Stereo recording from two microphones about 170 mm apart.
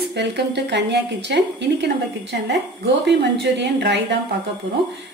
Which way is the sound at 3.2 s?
85° right.